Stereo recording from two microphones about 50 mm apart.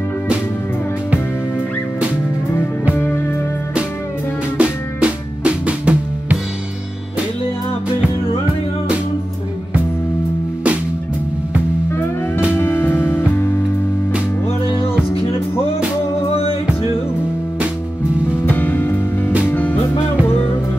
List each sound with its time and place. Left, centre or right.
4.6 s drum: right
12.5 s music: left
18.4 s music: left